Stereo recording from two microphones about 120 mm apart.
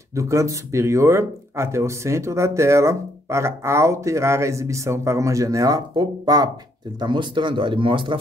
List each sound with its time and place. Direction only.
0.1 s speech: 25° right (ahead or behind); by 8.2 s 45° right (ahead or behind)